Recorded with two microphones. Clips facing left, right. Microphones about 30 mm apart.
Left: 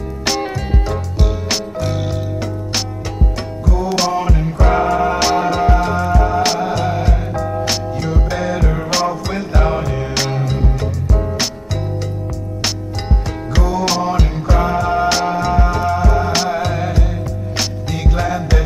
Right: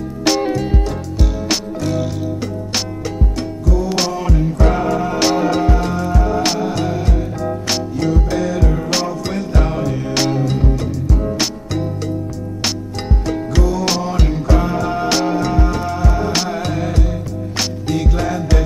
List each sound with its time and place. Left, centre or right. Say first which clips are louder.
0.2 s music: right 4 dB; centre
3.6 s music: left 2 dB; centre
8.1 s music: even; centre
9.8 s music: right 2 dB; centre
13.6 s music: left 3 dB; centre